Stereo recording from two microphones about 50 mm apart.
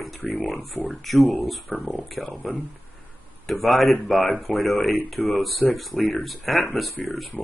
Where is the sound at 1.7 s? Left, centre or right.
Left.